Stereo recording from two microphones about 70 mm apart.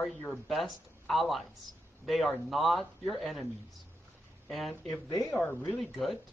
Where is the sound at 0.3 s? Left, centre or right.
Centre.